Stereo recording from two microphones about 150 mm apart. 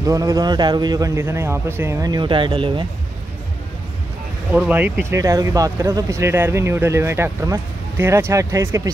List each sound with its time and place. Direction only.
0.0 s a man's voice: 25° right (ahead or behind)
4.5 s speech: 10° right (ahead or behind)